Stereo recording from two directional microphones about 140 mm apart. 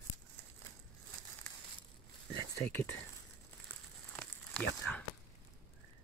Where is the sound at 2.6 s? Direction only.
15° left (ahead or behind).